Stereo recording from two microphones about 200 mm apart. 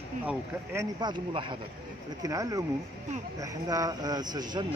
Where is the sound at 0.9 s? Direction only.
25° right (ahead or behind).